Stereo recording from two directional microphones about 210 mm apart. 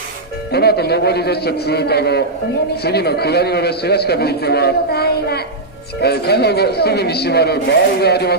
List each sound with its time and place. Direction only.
0.5 s a man's voice: 50° left (ahead or behind)